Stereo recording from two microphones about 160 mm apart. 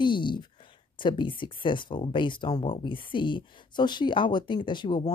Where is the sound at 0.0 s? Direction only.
30° left (ahead or behind).